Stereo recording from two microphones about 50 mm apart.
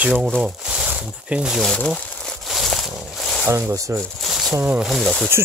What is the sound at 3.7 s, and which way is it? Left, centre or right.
Speech, right.